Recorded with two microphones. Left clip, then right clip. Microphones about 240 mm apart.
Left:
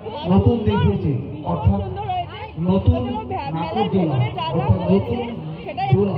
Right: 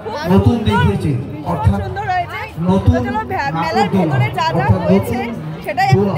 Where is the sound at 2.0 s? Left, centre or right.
Right.